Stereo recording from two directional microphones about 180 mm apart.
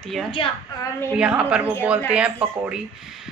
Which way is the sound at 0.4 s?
30° left (ahead or behind).